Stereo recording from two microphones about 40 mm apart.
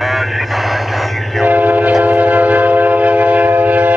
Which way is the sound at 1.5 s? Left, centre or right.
Right.